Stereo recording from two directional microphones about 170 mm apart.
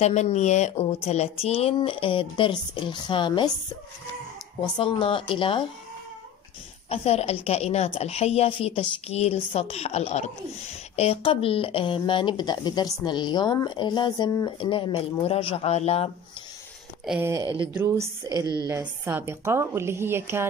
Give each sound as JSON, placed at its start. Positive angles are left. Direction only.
{"t": 0.0, "sound": "a woman's voice", "side_deg": 40}
{"t": 4.6, "sound": "speech", "side_deg": 30}
{"t": 6.9, "sound": "a woman's voice", "side_deg": 40}
{"t": 17.2, "sound": "a woman's voice", "side_deg": -15}